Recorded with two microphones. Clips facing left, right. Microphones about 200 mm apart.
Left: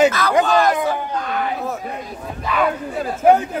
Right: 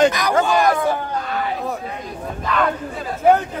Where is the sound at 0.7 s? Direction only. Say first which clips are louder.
Right 1 dB; 15° left (ahead or behind).